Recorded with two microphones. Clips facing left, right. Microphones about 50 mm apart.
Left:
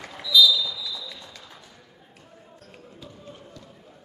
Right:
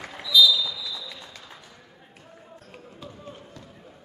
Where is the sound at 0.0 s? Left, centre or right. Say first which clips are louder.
Even; centre.